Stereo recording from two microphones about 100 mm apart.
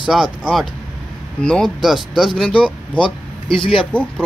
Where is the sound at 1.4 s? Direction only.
10° left (ahead or behind).